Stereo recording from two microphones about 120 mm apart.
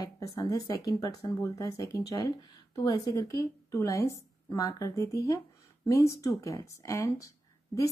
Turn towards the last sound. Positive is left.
turn(degrees=25)  # may be behind; listen again after turning